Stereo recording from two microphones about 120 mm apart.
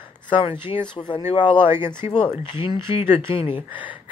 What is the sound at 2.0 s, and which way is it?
Speech, 55° left (ahead or behind).